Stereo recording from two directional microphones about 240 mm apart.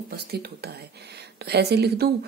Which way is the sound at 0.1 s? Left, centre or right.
Right.